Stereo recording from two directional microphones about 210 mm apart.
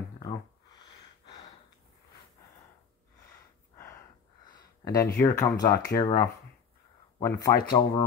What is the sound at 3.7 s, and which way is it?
Gasp, 15° left (ahead or behind).